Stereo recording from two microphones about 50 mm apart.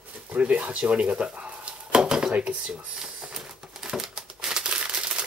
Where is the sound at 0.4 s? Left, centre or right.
Right.